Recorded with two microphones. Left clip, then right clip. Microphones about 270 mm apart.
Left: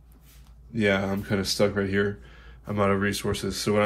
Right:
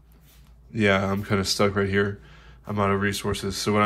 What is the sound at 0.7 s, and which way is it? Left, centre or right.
Speech, right.